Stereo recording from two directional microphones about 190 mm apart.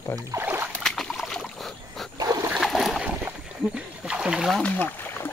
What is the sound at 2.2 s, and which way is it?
Dog, 20° right (ahead or behind).